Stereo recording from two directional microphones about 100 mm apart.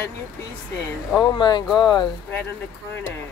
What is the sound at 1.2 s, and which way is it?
Speech, 40° left (ahead or behind).